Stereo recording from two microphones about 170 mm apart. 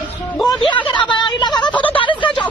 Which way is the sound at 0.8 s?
30° left (ahead or behind).